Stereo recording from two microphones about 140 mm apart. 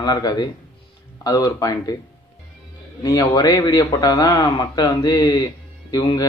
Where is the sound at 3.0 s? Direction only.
30° left (ahead or behind).